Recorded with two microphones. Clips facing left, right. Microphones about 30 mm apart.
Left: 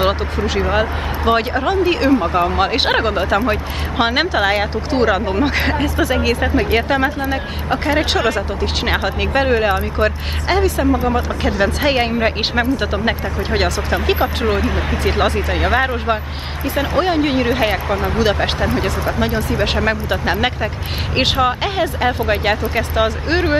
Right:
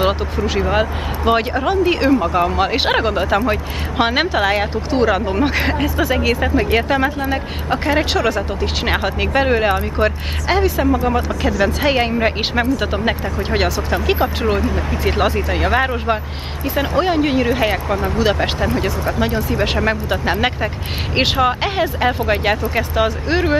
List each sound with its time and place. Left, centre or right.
0.0 s speech: centre
11.6 s speech: centre
13.8 s speech: centre
17.8 s speech: left
18.2 s speech: centre